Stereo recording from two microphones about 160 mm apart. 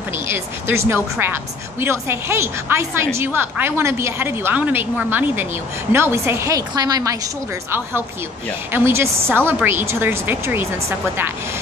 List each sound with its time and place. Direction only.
0.1 s speech: 15° right (ahead or behind)
8.7 s speech: 15° right (ahead or behind)